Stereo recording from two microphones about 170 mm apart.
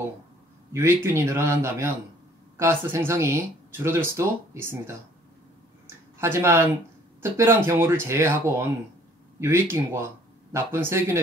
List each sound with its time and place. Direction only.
0.7 s speech: 15° right (ahead or behind)
6.1 s speech: 15° right (ahead or behind)